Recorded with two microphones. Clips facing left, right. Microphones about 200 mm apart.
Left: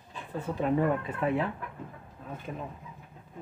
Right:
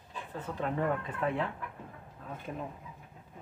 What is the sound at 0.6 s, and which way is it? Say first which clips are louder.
Speech: left 5 dB; 10° left (ahead or behind).